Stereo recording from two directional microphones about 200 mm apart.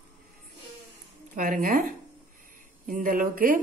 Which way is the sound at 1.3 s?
45° right (ahead or behind).